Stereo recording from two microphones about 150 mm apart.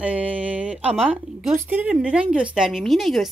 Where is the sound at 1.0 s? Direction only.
5° right (ahead or behind).